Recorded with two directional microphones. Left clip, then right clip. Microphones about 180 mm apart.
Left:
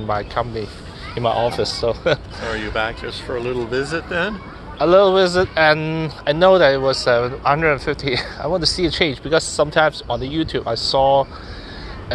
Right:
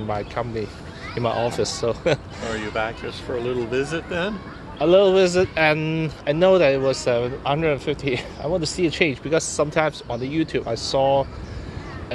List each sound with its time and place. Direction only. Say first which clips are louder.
0.1 s speech: left 5 dB; 10° right (ahead or behind)
2.6 s speech: left 3 dB; 30° left (ahead or behind)
4.7 s speech: left 3 dB; 15° right (ahead or behind)